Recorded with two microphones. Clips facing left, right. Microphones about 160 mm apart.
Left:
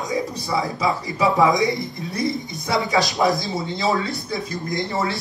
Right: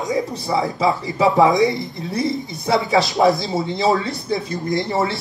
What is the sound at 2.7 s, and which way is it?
Speech, 20° right (ahead or behind).